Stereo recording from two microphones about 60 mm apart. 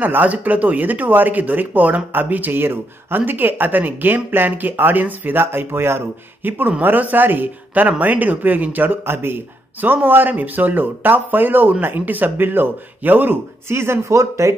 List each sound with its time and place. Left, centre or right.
0.0 s speech: right
13.7 s speech: right